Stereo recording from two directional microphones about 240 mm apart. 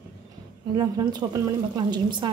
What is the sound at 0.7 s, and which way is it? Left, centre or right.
A woman's voice, centre.